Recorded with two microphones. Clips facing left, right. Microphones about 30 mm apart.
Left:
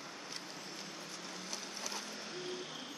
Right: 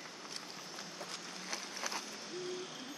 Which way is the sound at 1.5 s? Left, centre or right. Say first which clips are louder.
Right 4 dB; centre.